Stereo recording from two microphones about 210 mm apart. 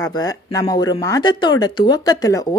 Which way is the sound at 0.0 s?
15° left (ahead or behind).